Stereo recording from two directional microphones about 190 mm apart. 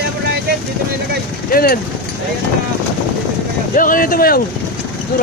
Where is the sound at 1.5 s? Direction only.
50° left (ahead or behind).